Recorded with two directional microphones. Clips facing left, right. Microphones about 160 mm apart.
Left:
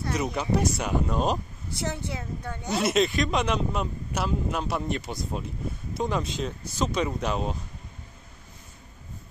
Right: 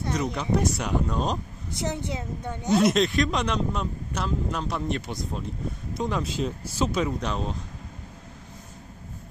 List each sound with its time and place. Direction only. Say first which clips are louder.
0.4 s speech: left 1 dB; centre (ahead or behind)
1.7 s a woman's voice: right 2 dB; 20° right (ahead or behind)
2.7 s speech: right 3 dB; 5° left (ahead or behind)